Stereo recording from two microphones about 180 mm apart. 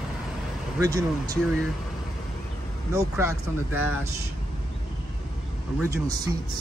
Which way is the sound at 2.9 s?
15° right (ahead or behind).